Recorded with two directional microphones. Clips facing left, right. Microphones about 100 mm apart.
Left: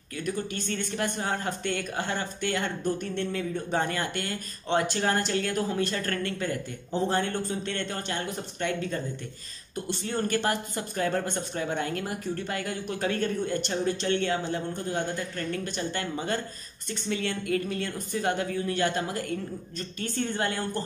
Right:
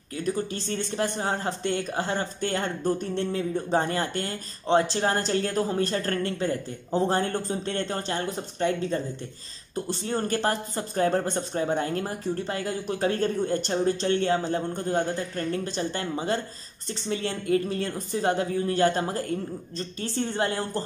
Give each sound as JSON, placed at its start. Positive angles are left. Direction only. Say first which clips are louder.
{"t": 0.2, "sound": "speech", "louder": "right 3 dB", "side_deg": -30}